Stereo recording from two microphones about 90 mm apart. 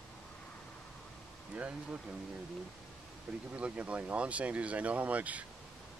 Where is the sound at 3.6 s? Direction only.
15° right (ahead or behind).